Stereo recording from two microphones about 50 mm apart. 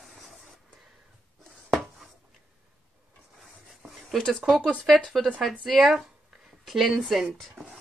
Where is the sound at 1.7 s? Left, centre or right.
Centre.